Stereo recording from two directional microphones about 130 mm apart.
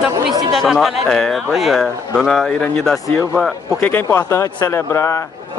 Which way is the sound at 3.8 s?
15° left (ahead or behind).